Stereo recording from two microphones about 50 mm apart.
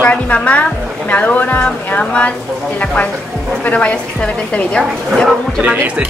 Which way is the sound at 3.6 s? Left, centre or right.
Left.